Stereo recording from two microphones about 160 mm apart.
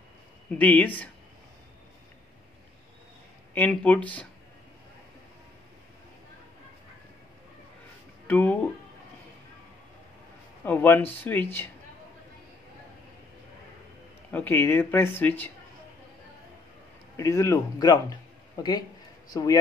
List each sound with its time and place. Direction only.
0.6 s speech: 10° left (ahead or behind)
3.5 s speech: 10° left (ahead or behind)
8.3 s speech: 10° left (ahead or behind)
10.6 s speech: 10° left (ahead or behind)
14.3 s speech: 10° left (ahead or behind)
17.2 s speech: 20° left (ahead or behind)